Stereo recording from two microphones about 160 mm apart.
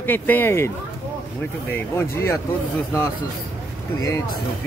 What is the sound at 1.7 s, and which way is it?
Speech, 15° left (ahead or behind).